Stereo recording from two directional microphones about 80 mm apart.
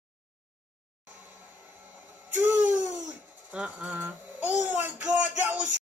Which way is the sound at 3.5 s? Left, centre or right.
Centre.